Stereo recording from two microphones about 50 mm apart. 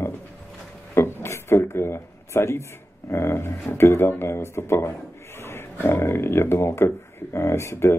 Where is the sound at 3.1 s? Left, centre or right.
Left.